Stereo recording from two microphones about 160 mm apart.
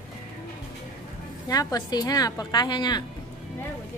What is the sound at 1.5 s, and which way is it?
A woman's voice, 25° left (ahead or behind).